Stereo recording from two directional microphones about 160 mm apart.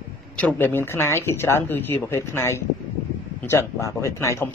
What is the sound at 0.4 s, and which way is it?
Speech, 10° left (ahead or behind).